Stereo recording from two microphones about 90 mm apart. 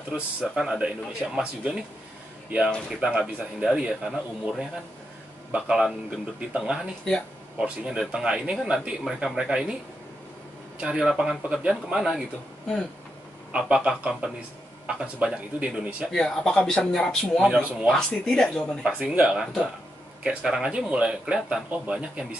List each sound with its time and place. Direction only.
0.4 s speech: 5° right (ahead or behind)
2.9 s speech: 5° right (ahead or behind)
10.8 s speech: 10° right (ahead or behind)
13.5 s speech: 10° right (ahead or behind)
16.1 s speech: 5° left (ahead or behind)
17.4 s speech: 10° right (ahead or behind)
17.9 s speech: 5° left (ahead or behind)
18.9 s speech: 15° right (ahead or behind)